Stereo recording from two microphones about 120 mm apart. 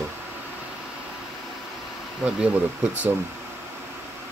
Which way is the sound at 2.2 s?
10° right (ahead or behind).